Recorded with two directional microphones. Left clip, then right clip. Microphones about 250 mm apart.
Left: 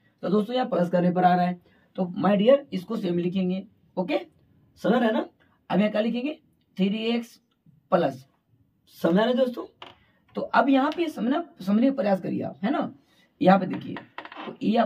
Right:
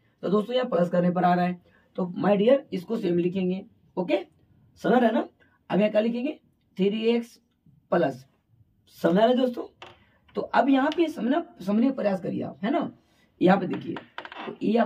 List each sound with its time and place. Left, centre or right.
0.2 s a man's voice: centre
13.9 s computer keyboard: right
14.6 s a man's voice: centre